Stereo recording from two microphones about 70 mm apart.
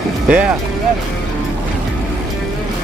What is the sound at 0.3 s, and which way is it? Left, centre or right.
Speech, centre.